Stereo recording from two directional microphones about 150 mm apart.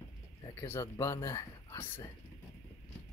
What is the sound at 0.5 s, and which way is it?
Speech, 15° left (ahead or behind).